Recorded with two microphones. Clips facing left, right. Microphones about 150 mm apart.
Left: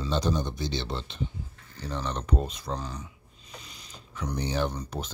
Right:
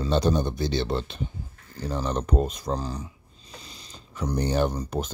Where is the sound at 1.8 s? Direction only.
40° right (ahead or behind).